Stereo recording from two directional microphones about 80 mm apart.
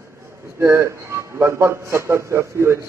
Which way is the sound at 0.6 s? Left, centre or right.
Right.